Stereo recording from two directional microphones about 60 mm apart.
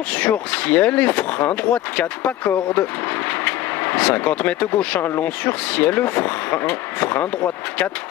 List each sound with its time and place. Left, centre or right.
0.1 s speech: left